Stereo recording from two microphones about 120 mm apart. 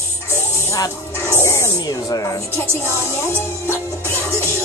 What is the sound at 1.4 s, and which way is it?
Speech, 25° left (ahead or behind).